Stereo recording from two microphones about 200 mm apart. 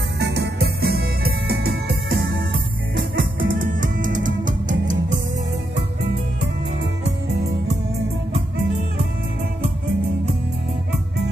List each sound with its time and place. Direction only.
0.2 s music: 55° right (ahead or behind)
3.2 s music: 45° right (ahead or behind)